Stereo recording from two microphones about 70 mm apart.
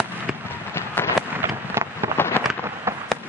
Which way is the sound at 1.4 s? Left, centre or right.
Right.